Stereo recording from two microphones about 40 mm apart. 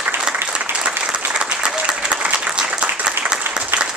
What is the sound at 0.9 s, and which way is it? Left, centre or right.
Applause, right.